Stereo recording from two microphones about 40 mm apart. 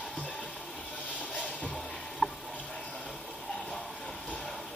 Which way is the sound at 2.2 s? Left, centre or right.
Centre.